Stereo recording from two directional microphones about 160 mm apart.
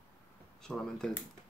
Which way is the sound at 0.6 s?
5° left (ahead or behind).